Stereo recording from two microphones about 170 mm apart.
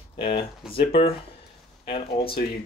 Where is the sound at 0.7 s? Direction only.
35° left (ahead or behind).